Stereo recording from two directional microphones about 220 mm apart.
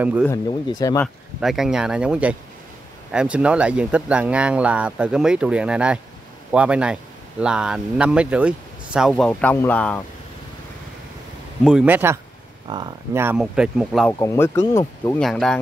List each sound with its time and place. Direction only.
0.0 s speech: 5° right (ahead or behind)
0.3 s speech: 20° left (ahead or behind)
1.0 s speech: centre (ahead or behind)
11.6 s speech: 5° right (ahead or behind)
13.4 s speech: centre (ahead or behind)
14.1 s speech: 15° left (ahead or behind)
15.2 s speech: centre (ahead or behind)